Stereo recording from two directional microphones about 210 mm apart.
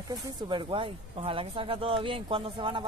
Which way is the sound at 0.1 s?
20° right (ahead or behind).